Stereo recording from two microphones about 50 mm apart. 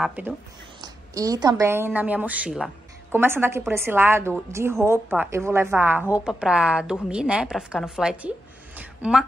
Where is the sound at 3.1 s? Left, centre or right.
Right.